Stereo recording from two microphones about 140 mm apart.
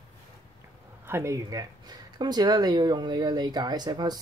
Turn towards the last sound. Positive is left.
turn(degrees=-30)  # may be behind; listen again after turning